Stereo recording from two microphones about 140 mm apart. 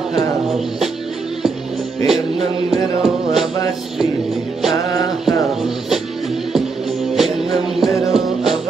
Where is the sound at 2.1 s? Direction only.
Centre (ahead or behind).